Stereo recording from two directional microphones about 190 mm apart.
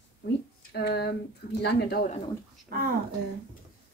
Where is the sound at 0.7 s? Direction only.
60° left (ahead or behind).